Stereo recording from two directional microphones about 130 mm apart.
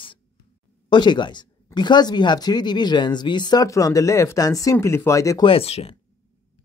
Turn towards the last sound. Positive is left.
turn(degrees=50)  # may be behind; listen again after turning